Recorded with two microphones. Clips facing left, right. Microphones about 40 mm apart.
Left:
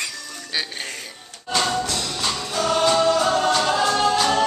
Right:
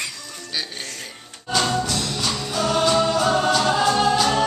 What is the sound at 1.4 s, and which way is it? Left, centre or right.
Music, centre.